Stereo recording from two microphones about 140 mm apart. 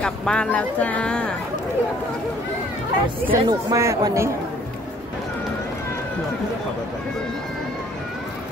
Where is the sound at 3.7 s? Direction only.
20° right (ahead or behind).